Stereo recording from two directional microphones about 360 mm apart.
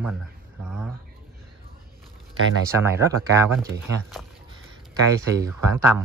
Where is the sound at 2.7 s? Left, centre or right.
Centre.